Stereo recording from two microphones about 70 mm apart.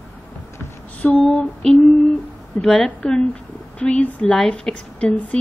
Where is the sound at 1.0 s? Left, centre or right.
Left.